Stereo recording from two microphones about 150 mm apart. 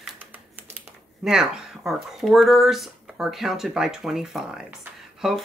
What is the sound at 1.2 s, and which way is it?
Speech, 5° right (ahead or behind).